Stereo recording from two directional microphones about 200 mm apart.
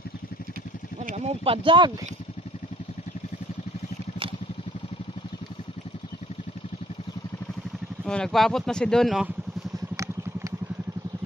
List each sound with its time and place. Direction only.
1.0 s speech: 35° right (ahead or behind)
8.0 s speech: 5° left (ahead or behind)